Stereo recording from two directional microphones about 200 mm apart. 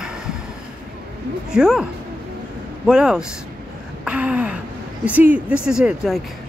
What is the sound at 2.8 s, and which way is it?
Speech, 5° right (ahead or behind).